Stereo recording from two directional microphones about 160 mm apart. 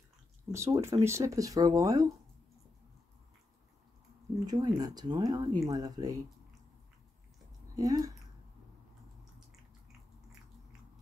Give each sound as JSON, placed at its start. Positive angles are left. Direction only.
{"t": 0.5, "sound": "speech", "side_deg": -15}
{"t": 4.5, "sound": "speech", "side_deg": -25}
{"t": 7.7, "sound": "speech", "side_deg": -20}